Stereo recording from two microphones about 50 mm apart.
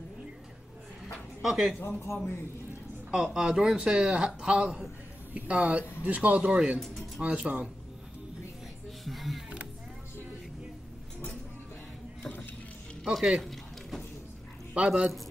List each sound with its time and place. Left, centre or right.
1.4 s speech: centre
2.1 s a man's voice: left
3.1 s a man's voice: centre
9.0 s music: centre
13.1 s speech: centre
13.5 s a sound: centre
14.7 s a man's voice: centre